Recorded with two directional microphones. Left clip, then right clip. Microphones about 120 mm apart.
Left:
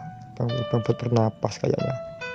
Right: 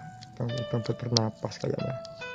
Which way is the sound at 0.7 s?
45° left (ahead or behind).